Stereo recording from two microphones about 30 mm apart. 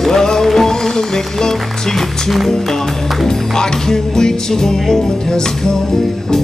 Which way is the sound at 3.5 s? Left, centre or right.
Centre.